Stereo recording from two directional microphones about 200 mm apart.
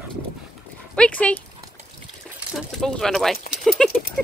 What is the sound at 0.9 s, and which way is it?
Speech, 5° left (ahead or behind).